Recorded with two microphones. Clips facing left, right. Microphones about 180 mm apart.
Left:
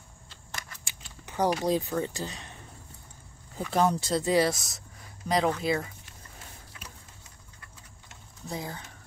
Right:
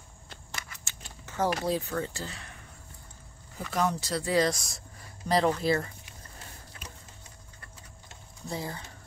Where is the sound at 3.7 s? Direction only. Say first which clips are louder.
Left 4 dB; 30° left (ahead or behind).